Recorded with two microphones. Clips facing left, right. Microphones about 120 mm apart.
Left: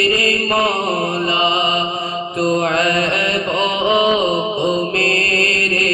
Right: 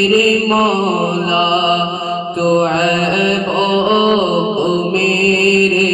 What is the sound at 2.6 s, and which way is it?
Mantra, 30° right (ahead or behind).